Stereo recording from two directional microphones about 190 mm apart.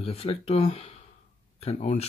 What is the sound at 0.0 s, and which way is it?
Speech, 30° left (ahead or behind).